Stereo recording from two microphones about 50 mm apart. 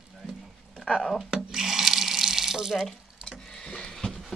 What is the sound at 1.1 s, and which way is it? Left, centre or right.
Sink, centre.